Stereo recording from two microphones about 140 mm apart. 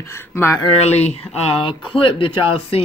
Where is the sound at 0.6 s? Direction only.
45° left (ahead or behind).